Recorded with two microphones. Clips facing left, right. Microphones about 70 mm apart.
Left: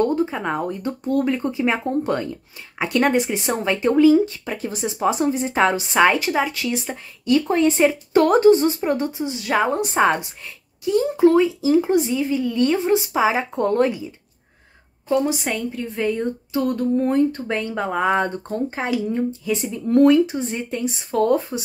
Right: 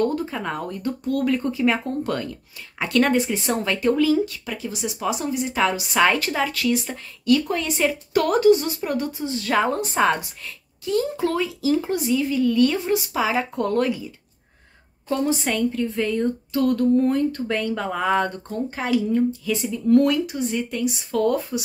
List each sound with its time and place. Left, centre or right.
0.0 s speech: left
4.6 s a woman's voice: left
6.0 s speech: centre